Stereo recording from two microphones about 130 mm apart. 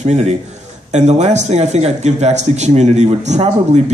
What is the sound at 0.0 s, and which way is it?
Speech, 55° right (ahead or behind).